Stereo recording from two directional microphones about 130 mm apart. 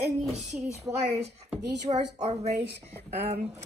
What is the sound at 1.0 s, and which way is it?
A woman's voice, 55° right (ahead or behind).